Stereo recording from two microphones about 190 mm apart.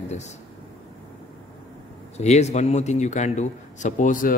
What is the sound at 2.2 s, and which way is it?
A man's voice, 35° left (ahead or behind).